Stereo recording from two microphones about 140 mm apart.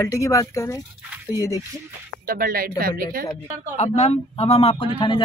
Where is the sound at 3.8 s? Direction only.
50° left (ahead or behind).